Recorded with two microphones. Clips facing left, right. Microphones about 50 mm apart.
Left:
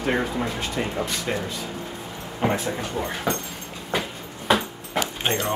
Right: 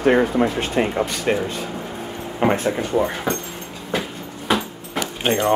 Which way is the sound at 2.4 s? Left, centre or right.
Right.